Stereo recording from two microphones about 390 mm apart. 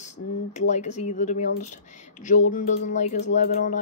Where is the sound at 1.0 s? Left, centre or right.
Centre.